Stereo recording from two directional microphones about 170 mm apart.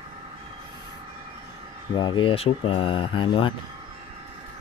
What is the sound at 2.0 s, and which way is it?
Speech, 25° left (ahead or behind).